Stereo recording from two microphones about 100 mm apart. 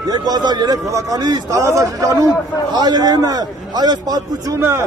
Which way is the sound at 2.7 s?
45° right (ahead or behind).